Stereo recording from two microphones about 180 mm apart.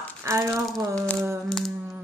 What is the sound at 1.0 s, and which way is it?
Speech, 5° left (ahead or behind).